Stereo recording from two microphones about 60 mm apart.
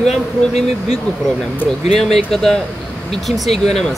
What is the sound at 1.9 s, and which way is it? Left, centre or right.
Speech, centre.